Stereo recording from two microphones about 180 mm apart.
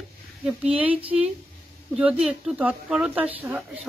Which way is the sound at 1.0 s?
30° right (ahead or behind).